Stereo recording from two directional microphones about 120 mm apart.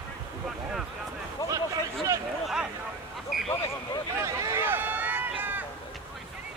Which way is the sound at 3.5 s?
35° left (ahead or behind).